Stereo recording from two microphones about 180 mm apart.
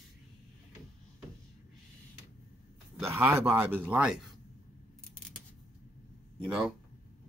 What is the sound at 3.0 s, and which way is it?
Speech, 15° right (ahead or behind).